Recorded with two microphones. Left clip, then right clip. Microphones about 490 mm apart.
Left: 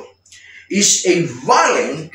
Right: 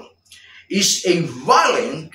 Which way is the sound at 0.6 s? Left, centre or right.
Right.